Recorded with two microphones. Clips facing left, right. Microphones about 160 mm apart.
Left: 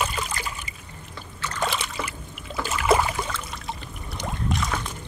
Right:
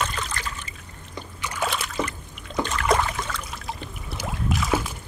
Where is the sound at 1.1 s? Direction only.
15° right (ahead or behind).